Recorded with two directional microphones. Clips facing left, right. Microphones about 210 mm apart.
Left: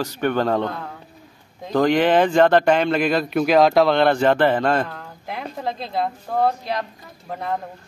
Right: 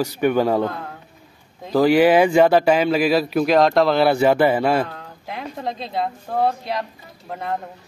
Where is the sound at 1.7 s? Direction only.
5° right (ahead or behind).